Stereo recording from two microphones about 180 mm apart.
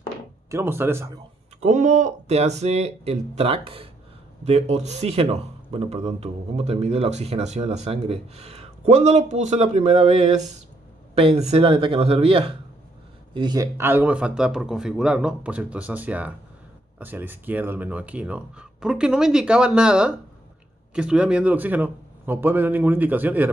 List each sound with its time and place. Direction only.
0.5 s speech: 15° right (ahead or behind)
1.6 s a man's voice: 40° right (ahead or behind); by 23.5 s 10° right (ahead or behind)